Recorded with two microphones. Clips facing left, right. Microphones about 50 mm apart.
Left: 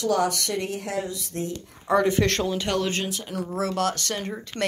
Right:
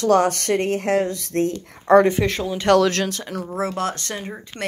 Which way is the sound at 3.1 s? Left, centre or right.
Right.